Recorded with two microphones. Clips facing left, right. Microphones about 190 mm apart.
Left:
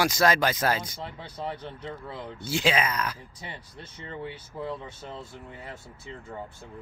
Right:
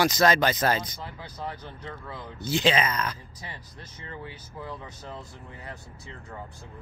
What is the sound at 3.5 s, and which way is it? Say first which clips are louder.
Speech: left 2 dB; 30° left (ahead or behind).